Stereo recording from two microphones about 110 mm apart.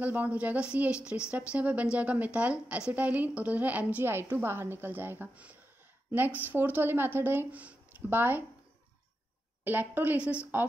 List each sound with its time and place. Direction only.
0.0 s speech: 15° right (ahead or behind)
9.7 s speech: 15° right (ahead or behind)